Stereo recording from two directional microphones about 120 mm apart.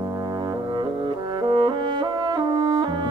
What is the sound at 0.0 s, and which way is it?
Brass instrument, 40° right (ahead or behind).